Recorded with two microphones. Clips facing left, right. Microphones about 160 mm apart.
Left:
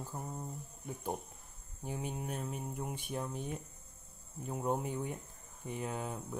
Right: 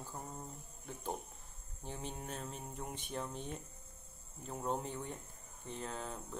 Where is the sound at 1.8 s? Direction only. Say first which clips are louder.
Left 5 dB; 10° left (ahead or behind).